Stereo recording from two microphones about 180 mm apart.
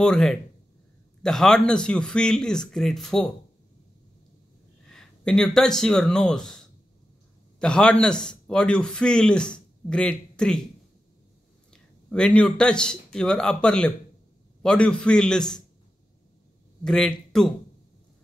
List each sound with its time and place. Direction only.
0.0 s speech: 5° left (ahead or behind)
4.8 s a man's voice: 5° left (ahead or behind)
11.7 s speech: 5° left (ahead or behind)
16.8 s speech: 5° left (ahead or behind)